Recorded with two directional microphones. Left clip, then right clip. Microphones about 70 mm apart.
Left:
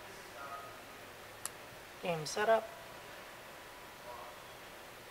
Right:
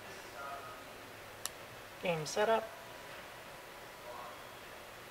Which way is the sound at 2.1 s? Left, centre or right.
Left.